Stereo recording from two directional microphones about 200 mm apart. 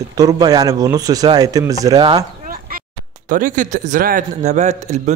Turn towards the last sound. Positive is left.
turn(degrees=-35)  # may be behind; listen again after turning